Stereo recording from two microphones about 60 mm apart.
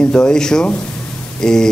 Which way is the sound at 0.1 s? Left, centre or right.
Centre.